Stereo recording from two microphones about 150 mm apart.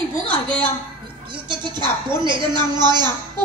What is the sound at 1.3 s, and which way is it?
A woman's voice, 30° right (ahead or behind).